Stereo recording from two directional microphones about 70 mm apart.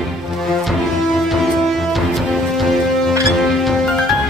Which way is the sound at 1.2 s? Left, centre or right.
Centre.